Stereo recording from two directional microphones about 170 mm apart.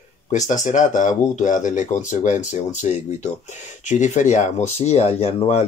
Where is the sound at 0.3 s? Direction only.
45° left (ahead or behind).